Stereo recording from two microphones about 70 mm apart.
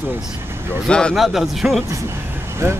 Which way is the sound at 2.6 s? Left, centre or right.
Right.